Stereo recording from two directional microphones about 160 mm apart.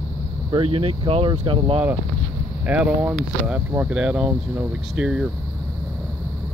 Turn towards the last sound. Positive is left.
turn(degrees=-5)  # may be behind; listen again after turning